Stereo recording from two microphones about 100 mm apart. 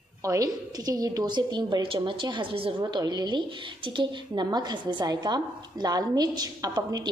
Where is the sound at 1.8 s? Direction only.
55° right (ahead or behind); by 7.0 s 40° right (ahead or behind).